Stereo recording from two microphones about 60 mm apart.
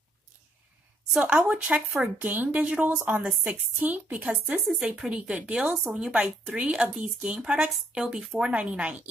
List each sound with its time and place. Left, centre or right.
1.2 s a woman's voice: centre
4.3 s a woman's voice: centre
8.5 s a woman's voice: centre